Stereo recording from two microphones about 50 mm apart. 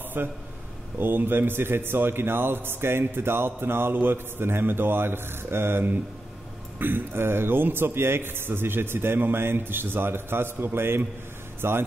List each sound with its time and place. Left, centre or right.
0.2 s a man's voice: right